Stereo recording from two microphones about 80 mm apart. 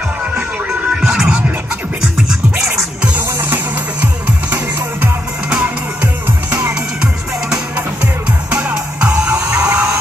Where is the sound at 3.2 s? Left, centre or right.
Right; by 7.8 s centre.